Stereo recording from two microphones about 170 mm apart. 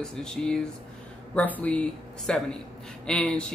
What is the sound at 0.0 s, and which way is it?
Speech, 5° left (ahead or behind).